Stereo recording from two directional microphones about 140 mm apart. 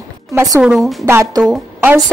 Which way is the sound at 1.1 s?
15° right (ahead or behind).